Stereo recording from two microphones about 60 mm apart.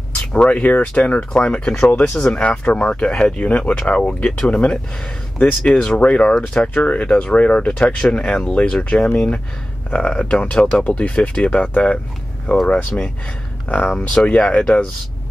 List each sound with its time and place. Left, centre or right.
0.1 s speech: left